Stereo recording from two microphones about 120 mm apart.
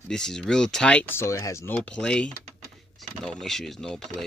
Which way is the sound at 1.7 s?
10° left (ahead or behind).